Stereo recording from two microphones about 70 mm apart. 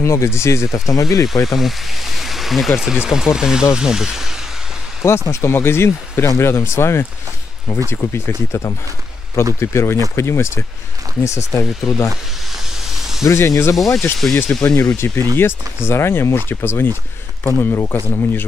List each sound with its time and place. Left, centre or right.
0.0 s speech: left
2.1 s stream: centre
2.8 s speech: centre
5.0 s speech: left
13.3 s speech: left
14.2 s speech: centre
14.6 s speech: left